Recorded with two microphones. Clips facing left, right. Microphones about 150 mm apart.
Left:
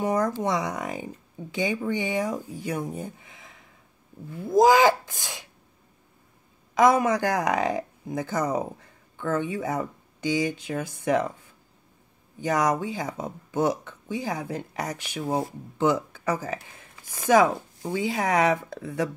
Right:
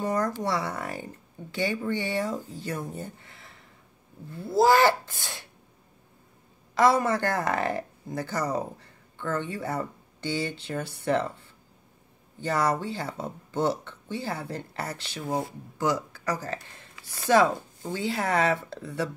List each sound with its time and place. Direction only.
0.0 s speech: 20° left (ahead or behind)
6.7 s speech: 15° left (ahead or behind)